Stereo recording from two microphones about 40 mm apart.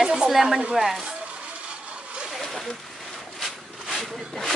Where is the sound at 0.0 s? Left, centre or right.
Centre.